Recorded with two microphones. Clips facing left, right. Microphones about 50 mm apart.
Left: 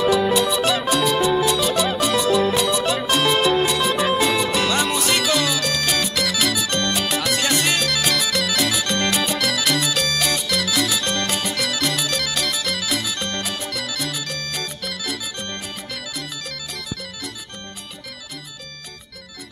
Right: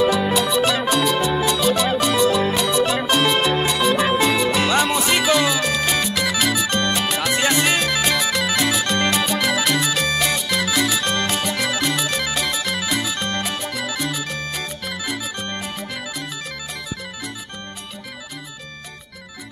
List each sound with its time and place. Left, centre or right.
0.2 s music: centre
0.6 s music: centre
0.8 s music: centre
1.1 s music: centre
2.0 s music: centre